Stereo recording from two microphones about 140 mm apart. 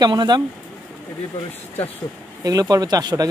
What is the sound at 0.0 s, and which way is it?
Speech, 30° right (ahead or behind).